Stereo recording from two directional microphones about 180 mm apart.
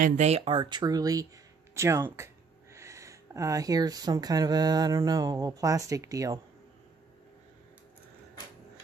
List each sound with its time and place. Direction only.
0.0 s speech: 40° right (ahead or behind); by 6.4 s 20° right (ahead or behind)